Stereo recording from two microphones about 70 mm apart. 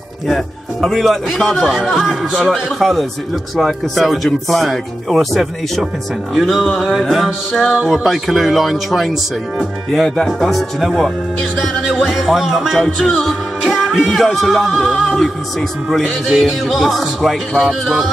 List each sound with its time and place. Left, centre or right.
0.3 s speech: centre
12.1 s speech: centre